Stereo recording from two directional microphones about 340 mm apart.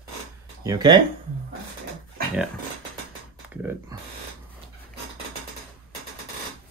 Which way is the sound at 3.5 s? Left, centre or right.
Centre.